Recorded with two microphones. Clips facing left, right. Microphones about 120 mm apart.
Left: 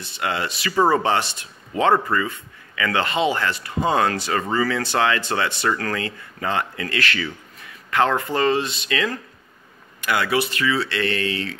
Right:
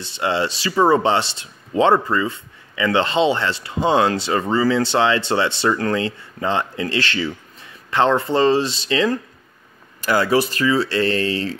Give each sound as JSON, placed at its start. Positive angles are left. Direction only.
{"t": 0.0, "sound": "speech", "side_deg": -25}